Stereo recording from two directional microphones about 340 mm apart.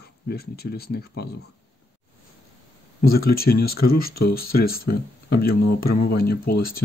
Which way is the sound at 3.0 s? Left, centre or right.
Left.